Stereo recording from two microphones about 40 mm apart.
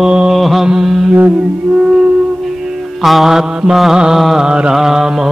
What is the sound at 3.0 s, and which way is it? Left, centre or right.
Mantra, centre.